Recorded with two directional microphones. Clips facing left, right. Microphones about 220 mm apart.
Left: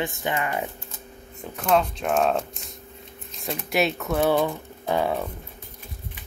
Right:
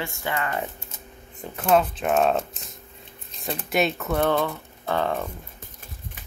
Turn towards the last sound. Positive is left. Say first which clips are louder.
# left 1 dB
turn(degrees=10)  # may be behind; listen again after turning